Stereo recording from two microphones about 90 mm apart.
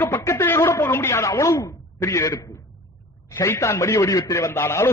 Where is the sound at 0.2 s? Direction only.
30° left (ahead or behind).